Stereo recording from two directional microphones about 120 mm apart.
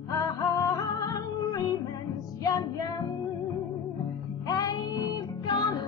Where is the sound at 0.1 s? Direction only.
30° left (ahead or behind).